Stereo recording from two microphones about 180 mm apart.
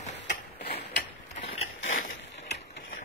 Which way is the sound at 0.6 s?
65° left (ahead or behind).